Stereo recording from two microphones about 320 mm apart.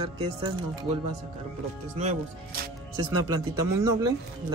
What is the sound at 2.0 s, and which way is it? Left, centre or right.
Speech, right.